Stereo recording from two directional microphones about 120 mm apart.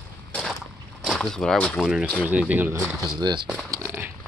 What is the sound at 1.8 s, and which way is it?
Speech, 5° right (ahead or behind).